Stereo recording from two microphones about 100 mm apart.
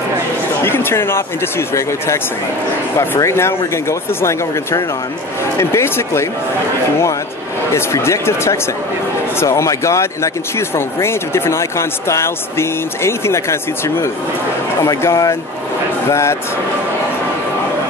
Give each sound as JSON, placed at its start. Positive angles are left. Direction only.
{"t": 0.7, "sound": "a sound", "side_deg": 25}
{"t": 1.7, "sound": "speech", "side_deg": 30}
{"t": 7.7, "sound": "speech", "side_deg": 30}